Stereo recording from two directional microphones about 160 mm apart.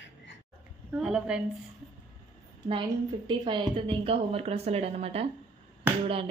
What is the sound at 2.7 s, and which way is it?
A woman's voice, 30° right (ahead or behind).